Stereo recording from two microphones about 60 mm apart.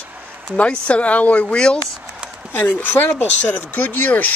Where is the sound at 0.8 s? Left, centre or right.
Left.